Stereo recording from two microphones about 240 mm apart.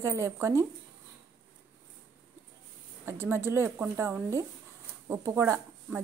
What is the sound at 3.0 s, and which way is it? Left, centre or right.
A woman's voice, centre.